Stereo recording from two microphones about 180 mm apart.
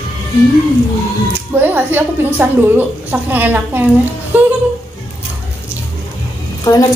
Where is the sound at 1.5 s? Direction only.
10° right (ahead or behind).